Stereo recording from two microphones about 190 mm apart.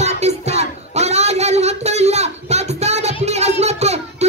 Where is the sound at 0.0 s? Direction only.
35° right (ahead or behind).